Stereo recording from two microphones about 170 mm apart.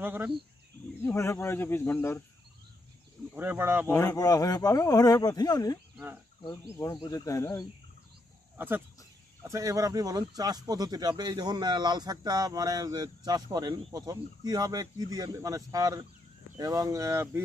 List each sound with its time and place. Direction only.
0.0 s speech: 10° right (ahead or behind)
1.0 s speech: 15° left (ahead or behind)
3.3 s speech: 15° right (ahead or behind)
3.8 s speech: 20° left (ahead or behind)
8.5 s speech: 10° right (ahead or behind)